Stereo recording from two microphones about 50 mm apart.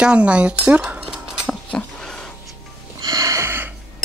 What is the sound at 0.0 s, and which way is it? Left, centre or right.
Speech, right.